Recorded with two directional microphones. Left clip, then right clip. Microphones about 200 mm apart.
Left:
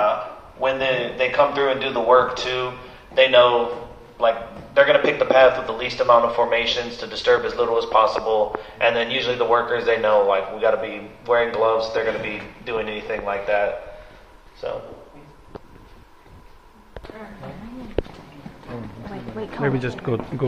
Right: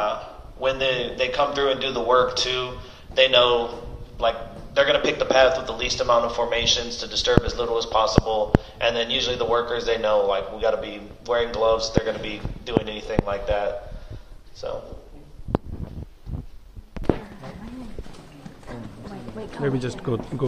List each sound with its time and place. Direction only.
0.6 s a man's voice: 45° left (ahead or behind)
14.6 s a man's voice: 20° left (ahead or behind)
19.6 s speech: 10° right (ahead or behind)